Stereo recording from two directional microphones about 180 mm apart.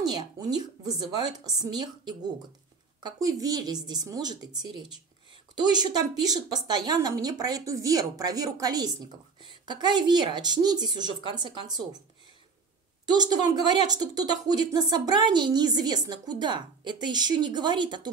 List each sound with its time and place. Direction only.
0.0 s a woman's voice: 20° right (ahead or behind)
13.1 s a woman's voice: 25° right (ahead or behind)